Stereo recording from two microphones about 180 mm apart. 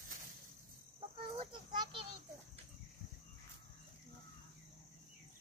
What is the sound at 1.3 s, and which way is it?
Children playing, 30° right (ahead or behind).